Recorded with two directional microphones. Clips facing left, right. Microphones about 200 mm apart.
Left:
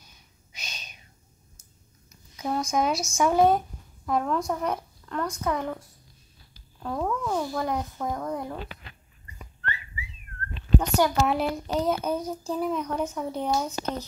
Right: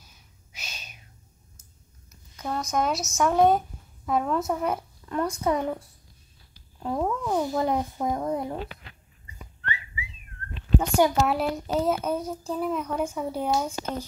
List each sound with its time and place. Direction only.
0.0 s gasp: 5° right (ahead or behind)
2.3 s a sound: 10° left (ahead or behind)
2.6 s speech: centre (ahead or behind)
5.4 s speech: 25° right (ahead or behind)
6.8 s speech: 15° right (ahead or behind)
10.8 s a child's voice: 5° right (ahead or behind)